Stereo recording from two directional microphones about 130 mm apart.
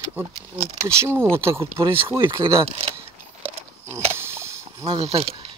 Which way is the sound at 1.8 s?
40° right (ahead or behind).